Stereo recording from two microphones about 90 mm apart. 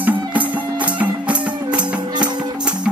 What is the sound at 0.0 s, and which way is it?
Music, 15° right (ahead or behind).